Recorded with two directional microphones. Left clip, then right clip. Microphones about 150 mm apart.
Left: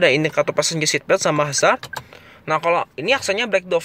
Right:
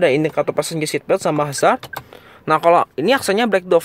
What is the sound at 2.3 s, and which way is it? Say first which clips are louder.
Speech: right 5 dB; 35° right (ahead or behind).